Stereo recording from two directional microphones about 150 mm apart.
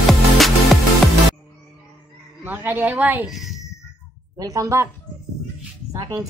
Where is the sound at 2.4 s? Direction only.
15° right (ahead or behind).